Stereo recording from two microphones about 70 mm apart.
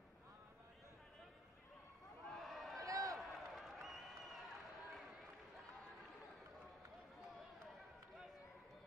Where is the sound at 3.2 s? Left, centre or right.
Centre.